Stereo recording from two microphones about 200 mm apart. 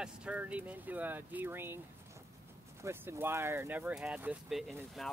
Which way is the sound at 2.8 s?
10° right (ahead or behind).